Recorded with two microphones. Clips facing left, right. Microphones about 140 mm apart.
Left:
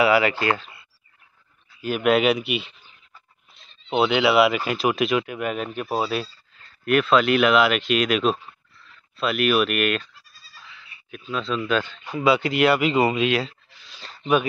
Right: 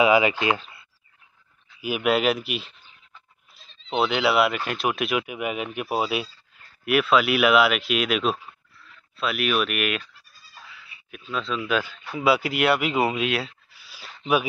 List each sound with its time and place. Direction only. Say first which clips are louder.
0.0 s speech: even; 15° right (ahead or behind)
1.8 s speech: left 3 dB; 10° right (ahead or behind)
3.9 s a man's voice: left 3 dB; centre (ahead or behind)